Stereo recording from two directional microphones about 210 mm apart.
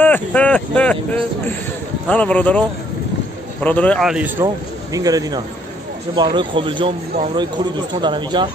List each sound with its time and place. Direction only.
0.0 s speech: 5° left (ahead or behind)
2.0 s speech: 5° left (ahead or behind)
3.6 s a man's voice: 5° left (ahead or behind)
4.9 s speech: 15° right (ahead or behind)